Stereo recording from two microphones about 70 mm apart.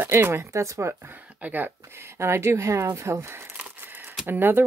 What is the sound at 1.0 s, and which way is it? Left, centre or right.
Speech, right.